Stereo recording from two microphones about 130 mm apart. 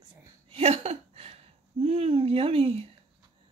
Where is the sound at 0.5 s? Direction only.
50° right (ahead or behind).